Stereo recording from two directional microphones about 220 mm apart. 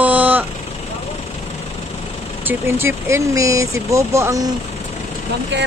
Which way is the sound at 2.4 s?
10° right (ahead or behind).